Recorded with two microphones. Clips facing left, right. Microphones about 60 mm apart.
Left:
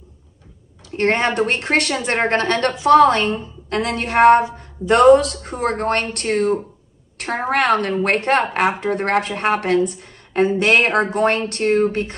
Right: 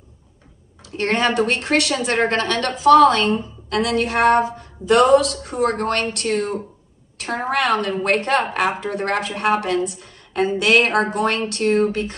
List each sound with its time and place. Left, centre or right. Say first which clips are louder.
0.9 s a woman's voice: left 1 dB; left